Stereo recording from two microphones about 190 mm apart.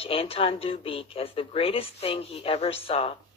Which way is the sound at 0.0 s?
30° left (ahead or behind).